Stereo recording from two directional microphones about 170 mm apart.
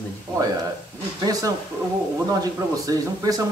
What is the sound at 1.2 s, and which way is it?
Speech, 20° right (ahead or behind).